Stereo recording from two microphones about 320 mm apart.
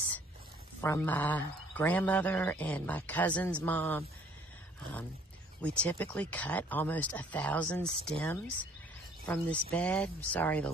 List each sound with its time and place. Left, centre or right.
0.7 s speech: centre
5.6 s speech: centre